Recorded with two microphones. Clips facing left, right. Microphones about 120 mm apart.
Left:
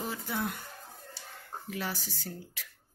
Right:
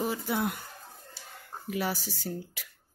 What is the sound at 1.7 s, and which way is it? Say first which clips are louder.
Speech: right 6 dB; 10° right (ahead or behind).